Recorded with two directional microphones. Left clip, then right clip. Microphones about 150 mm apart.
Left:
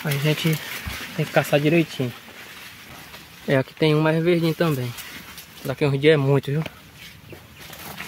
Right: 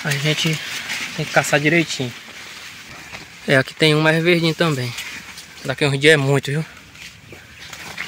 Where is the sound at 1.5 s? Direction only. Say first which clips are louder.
Right 3 dB; 30° left (ahead or behind).